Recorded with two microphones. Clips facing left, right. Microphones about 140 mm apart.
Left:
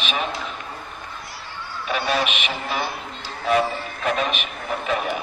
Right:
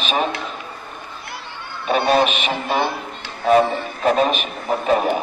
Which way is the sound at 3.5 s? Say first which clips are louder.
Right 6 dB; 35° right (ahead or behind).